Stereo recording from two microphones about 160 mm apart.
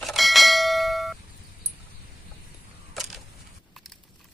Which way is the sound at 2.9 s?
Centre (ahead or behind).